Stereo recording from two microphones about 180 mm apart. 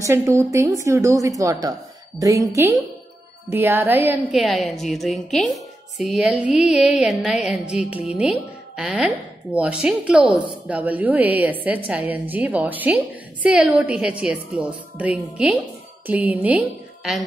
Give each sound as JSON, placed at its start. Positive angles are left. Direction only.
{"t": 0.0, "sound": "a woman's voice", "side_deg": -15}
{"t": 4.4, "sound": "music", "side_deg": 0}
{"t": 8.2, "sound": "a woman's voice", "side_deg": -5}